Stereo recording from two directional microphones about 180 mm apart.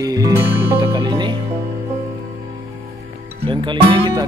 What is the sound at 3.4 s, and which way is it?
Speech, 25° right (ahead or behind).